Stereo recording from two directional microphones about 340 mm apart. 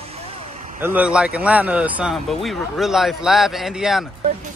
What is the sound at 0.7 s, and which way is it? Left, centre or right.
Speech, centre.